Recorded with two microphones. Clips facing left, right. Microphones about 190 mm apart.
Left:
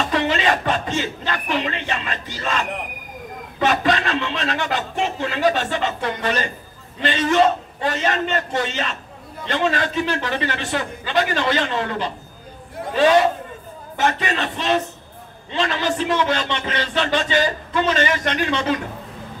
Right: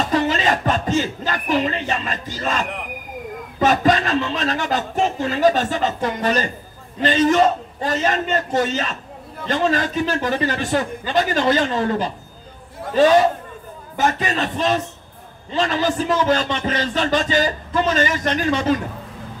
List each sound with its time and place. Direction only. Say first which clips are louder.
0.1 s a man's voice: right 1 dB; 40° right (ahead or behind)
3.5 s a man's voice: right 3 dB; 40° right (ahead or behind)
14.0 s a man's voice: right 1 dB; 40° right (ahead or behind)